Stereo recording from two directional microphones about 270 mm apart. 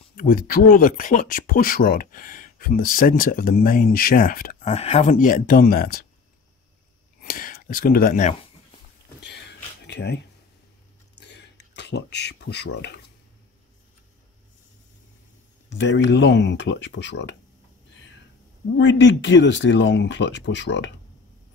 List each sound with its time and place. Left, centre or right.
0.2 s speech: left
7.2 s speech: left
9.2 s a sound: left
11.1 s a sound: left
15.7 s speech: left
18.8 s speech: left